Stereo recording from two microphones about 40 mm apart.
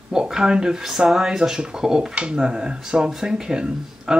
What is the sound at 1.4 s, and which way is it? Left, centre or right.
Speech, right.